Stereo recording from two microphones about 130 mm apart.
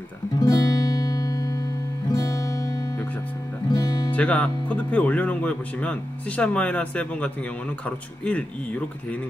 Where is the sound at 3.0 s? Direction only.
15° left (ahead or behind).